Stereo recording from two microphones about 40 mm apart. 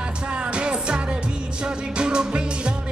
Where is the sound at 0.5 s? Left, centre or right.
Right.